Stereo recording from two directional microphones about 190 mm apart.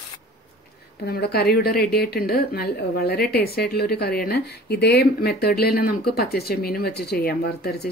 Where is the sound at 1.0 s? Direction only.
55° left (ahead or behind).